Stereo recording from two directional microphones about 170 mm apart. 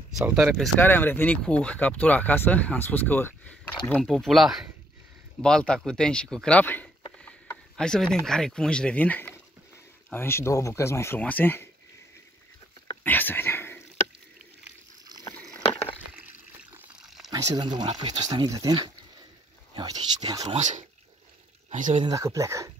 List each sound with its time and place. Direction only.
0.3 s speech: centre (ahead or behind)
13.0 s a sound: 10° left (ahead or behind)
15.7 s a sound: 10° left (ahead or behind)
16.7 s water: 5° right (ahead or behind)
17.3 s speech: 25° right (ahead or behind)
20.5 s speech: 45° right (ahead or behind)
22.0 s speech: 20° right (ahead or behind)